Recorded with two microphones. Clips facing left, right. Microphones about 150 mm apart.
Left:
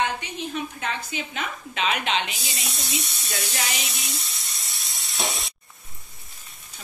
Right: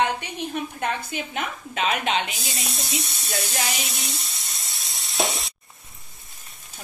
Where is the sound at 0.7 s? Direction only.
55° right (ahead or behind).